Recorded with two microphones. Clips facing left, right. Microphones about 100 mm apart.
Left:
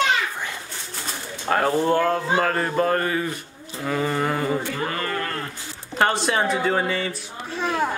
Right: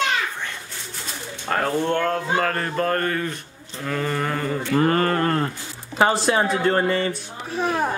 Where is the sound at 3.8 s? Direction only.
5° left (ahead or behind).